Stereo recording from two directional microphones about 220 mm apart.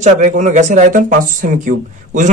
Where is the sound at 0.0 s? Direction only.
35° right (ahead or behind).